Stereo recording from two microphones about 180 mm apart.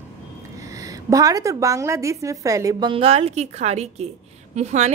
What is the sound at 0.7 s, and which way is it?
A woman's voice, 20° right (ahead or behind).